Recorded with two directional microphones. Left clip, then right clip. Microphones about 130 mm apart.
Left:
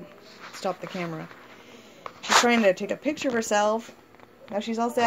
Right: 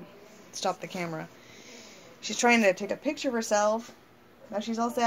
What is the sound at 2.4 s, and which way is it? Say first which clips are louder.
Speech: left 1 dB; 20° left (ahead or behind).